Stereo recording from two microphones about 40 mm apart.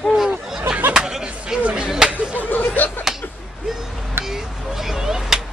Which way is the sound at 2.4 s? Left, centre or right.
Left.